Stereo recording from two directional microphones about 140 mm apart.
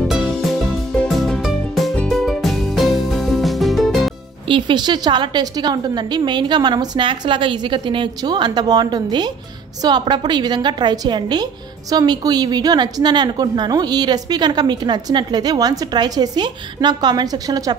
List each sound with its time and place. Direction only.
0.9 s music: centre (ahead or behind)
4.5 s a woman's voice: 35° right (ahead or behind)